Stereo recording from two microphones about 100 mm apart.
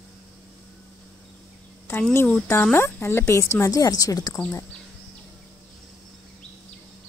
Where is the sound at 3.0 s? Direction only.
25° left (ahead or behind).